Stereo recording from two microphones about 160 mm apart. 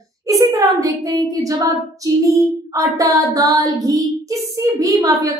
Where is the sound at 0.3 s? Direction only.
20° right (ahead or behind).